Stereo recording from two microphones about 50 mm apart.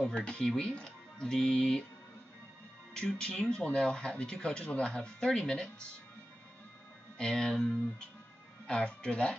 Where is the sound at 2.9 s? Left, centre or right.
Centre.